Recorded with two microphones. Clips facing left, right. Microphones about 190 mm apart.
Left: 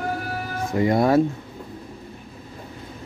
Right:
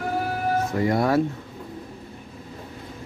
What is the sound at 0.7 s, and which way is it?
Music, 20° left (ahead or behind).